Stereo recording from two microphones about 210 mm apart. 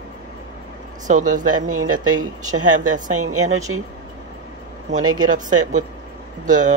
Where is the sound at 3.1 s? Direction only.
90° right.